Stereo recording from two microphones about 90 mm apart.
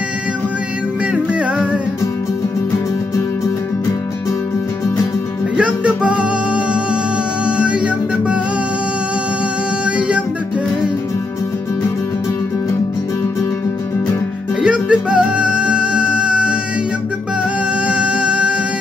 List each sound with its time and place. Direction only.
1.1 s music: 10° right (ahead or behind)
5.6 s music: 15° right (ahead or behind)
9.8 s music: 15° right (ahead or behind)
14.6 s music: 10° right (ahead or behind)
17.8 s music: 10° right (ahead or behind)